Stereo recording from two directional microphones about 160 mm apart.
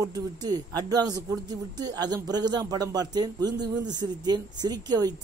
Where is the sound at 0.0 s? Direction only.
25° right (ahead or behind).